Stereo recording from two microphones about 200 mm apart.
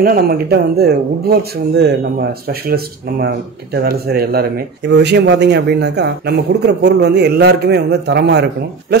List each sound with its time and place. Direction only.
0.0 s speech: 50° right (ahead or behind)